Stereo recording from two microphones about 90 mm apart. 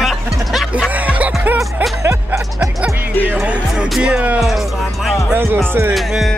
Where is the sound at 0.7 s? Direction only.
15° right (ahead or behind).